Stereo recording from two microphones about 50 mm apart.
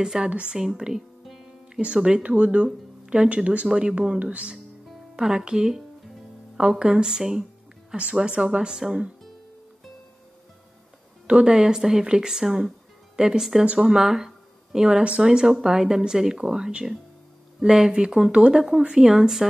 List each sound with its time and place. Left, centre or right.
0.0 s speech: centre
1.2 s music: centre
1.8 s speech: centre
11.2 s speech: centre